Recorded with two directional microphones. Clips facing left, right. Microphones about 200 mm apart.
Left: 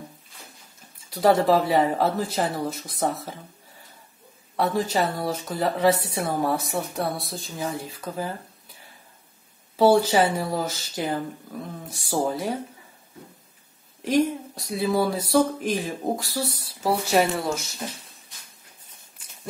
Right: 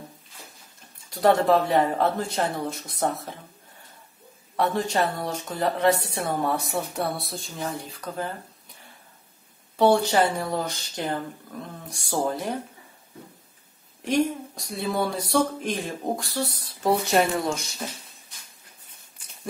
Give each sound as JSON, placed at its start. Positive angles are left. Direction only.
{"t": 1.1, "sound": "speech", "side_deg": 0}
{"t": 4.6, "sound": "speech", "side_deg": 0}
{"t": 9.8, "sound": "speech", "side_deg": 5}
{"t": 14.0, "sound": "speech", "side_deg": 0}